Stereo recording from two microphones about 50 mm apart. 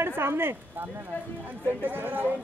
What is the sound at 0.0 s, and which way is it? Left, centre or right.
Speech, right.